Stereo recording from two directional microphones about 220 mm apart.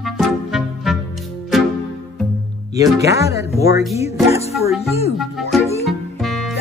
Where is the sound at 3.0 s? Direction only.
15° right (ahead or behind).